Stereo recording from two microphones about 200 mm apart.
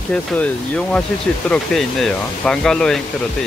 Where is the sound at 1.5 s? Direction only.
5° left (ahead or behind).